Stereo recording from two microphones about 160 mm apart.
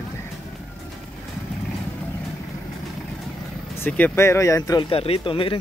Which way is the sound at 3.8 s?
10° left (ahead or behind).